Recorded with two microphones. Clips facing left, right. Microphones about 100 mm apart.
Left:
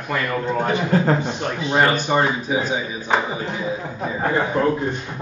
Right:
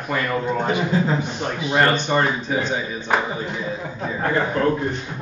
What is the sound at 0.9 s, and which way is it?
Speech, 55° left (ahead or behind).